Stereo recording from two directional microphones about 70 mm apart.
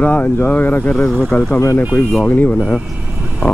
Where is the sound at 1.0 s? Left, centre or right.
Centre.